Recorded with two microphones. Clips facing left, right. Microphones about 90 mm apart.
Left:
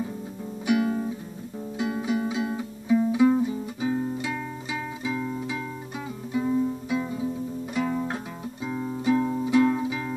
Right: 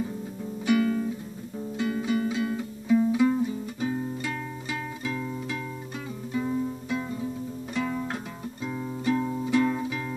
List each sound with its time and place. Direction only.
0.7 s music: 15° left (ahead or behind)